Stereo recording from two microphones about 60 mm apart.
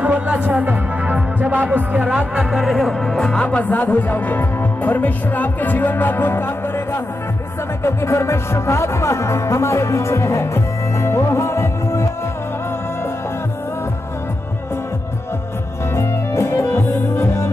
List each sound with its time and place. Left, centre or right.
0.0 s music: right; by 3.6 s centre
3.6 s speech: left
7.8 s music: left
16.0 s music: left